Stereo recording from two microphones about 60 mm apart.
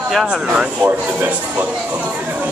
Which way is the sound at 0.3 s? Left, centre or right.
Centre.